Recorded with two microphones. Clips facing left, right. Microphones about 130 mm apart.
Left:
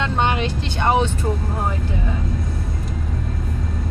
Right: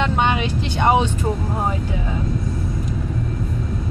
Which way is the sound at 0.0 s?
15° right (ahead or behind).